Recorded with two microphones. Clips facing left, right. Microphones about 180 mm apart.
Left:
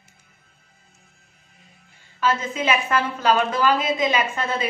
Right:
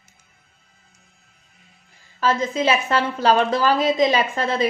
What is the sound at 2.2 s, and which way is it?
A woman's voice, 35° right (ahead or behind).